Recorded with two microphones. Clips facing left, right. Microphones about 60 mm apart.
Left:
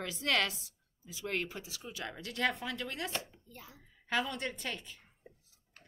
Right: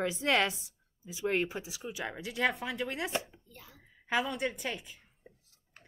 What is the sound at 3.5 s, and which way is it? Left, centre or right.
Speech, centre.